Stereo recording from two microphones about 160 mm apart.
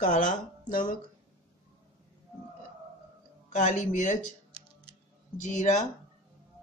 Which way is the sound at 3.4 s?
50° left (ahead or behind).